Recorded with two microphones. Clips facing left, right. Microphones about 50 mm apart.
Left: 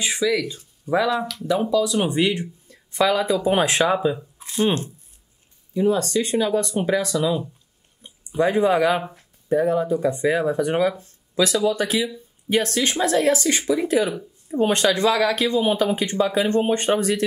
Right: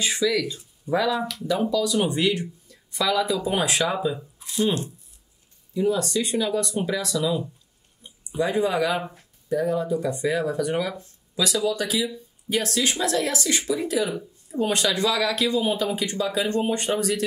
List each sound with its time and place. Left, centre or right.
0.0 s speech: centre
1.1 s speech: centre
1.5 s speech: centre
11.3 s speech: left